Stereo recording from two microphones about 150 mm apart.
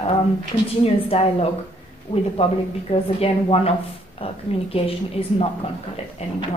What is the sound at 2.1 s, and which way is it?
A woman's voice, 35° left (ahead or behind).